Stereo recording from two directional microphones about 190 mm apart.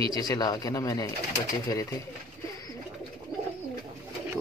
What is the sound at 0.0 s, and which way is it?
Speech, 20° left (ahead or behind).